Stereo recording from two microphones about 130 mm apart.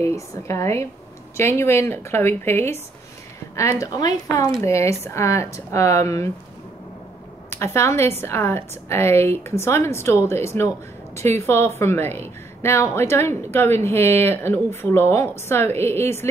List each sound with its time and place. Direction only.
0.0 s a woman's voice: 25° left (ahead or behind)
7.4 s a woman's voice: 20° left (ahead or behind)